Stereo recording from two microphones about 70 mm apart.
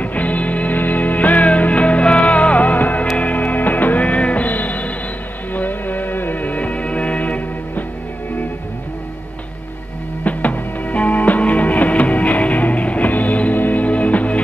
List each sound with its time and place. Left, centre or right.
0.0 s music: left
10.2 s music: left